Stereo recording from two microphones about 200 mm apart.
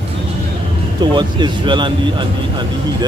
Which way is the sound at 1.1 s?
25° right (ahead or behind).